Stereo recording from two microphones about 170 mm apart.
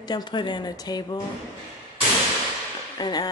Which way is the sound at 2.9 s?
25° left (ahead or behind).